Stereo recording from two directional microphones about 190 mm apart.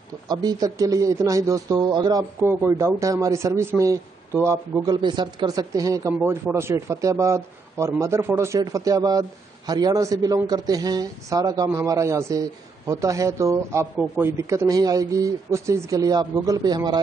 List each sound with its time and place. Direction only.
0.3 s speech: 20° right (ahead or behind)